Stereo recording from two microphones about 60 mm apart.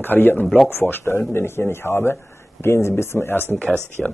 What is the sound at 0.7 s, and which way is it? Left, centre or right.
Speech, left.